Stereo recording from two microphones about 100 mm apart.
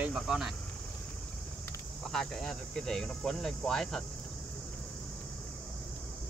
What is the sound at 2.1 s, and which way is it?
Speech, 5° left (ahead or behind).